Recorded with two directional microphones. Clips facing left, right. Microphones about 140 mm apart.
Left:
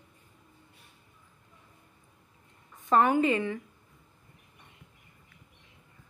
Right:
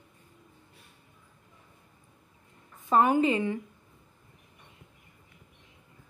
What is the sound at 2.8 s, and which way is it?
Speech, 15° right (ahead or behind).